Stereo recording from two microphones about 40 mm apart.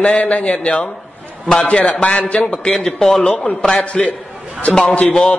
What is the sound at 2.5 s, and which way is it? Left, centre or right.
Speech, left.